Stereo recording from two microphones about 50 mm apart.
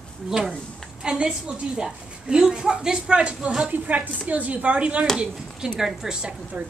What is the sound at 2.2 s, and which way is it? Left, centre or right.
A woman's voice, centre.